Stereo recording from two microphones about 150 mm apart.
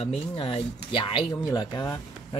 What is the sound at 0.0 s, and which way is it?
Speech, 40° left (ahead or behind).